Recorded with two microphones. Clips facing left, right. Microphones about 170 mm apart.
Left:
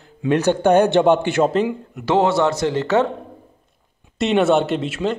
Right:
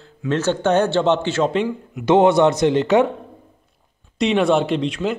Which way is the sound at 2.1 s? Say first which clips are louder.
Right 3 dB; 20° right (ahead or behind).